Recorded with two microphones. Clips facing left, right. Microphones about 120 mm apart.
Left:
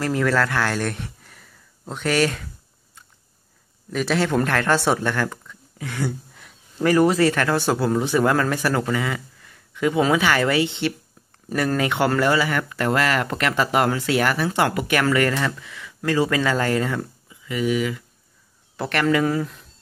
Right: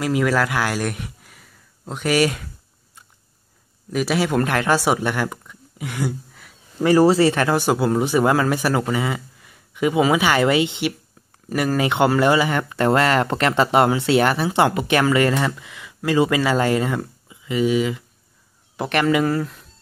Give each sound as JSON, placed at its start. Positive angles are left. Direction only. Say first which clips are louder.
{"t": 0.0, "sound": "a man's voice", "louder": "right 1 dB", "side_deg": -10}
{"t": 3.9, "sound": "speech", "louder": "right 1 dB", "side_deg": -10}
{"t": 7.0, "sound": "a man's voice", "louder": "right 3 dB", "side_deg": -30}
{"t": 19.2, "sound": "speech", "louder": "right 1 dB", "side_deg": 0}